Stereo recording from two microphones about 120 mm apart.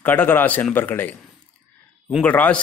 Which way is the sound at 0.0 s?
15° left (ahead or behind).